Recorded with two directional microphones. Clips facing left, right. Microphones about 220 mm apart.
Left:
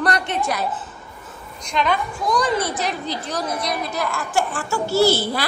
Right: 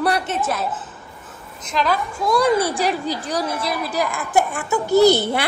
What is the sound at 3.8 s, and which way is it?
A child's voice, 15° right (ahead or behind).